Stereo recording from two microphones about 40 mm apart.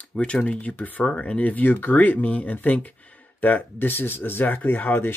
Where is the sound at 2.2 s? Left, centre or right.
Left.